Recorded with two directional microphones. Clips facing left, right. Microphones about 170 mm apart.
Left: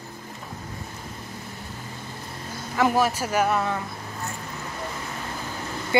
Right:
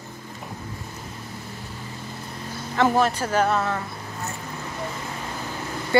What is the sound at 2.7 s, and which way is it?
Speech, 10° left (ahead or behind).